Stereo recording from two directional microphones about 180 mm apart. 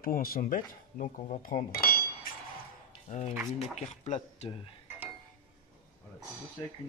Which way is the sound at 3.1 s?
40° left (ahead or behind).